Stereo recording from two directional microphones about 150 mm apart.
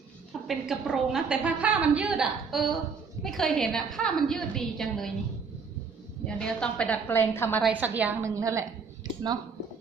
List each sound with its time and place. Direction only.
0.5 s a woman's voice: centre (ahead or behind)
6.2 s a woman's voice: 5° left (ahead or behind)
7.7 s a woman's voice: 10° right (ahead or behind)